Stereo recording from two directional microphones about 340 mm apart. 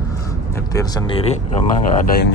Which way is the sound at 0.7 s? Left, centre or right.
Centre.